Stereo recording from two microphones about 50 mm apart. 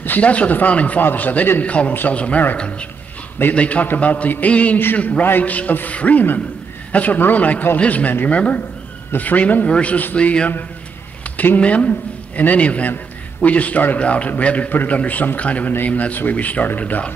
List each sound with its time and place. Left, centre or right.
0.2 s a man's voice: left
9.7 s a man's voice: left
14.7 s a man's voice: left